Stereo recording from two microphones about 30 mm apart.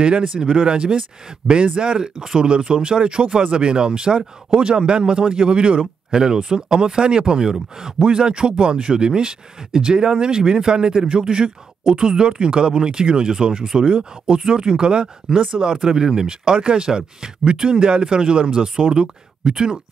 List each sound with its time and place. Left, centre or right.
0.0 s speech: right
6.1 s speech: right
7.4 s speech: centre
8.0 s speech: right
16.5 s speech: right